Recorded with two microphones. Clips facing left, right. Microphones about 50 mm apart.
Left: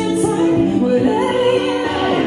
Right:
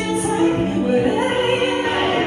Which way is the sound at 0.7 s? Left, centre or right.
Right.